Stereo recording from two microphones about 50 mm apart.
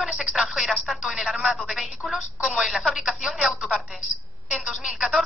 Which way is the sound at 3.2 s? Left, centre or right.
Centre.